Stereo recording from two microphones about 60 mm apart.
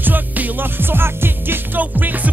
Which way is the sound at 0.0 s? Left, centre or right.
Right.